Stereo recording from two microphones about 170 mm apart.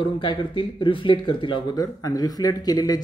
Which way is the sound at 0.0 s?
30° left (ahead or behind).